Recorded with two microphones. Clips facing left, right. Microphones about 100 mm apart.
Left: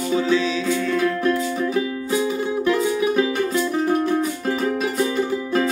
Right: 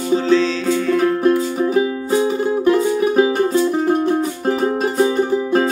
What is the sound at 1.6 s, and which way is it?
Music, 35° right (ahead or behind).